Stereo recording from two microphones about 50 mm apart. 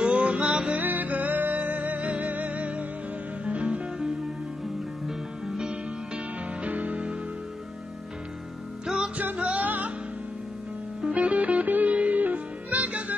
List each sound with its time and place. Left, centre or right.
0.0 s music: right
0.7 s music: right
5.0 s music: centre
8.8 s music: centre
9.1 s music: right
11.0 s music: centre
11.2 s music: right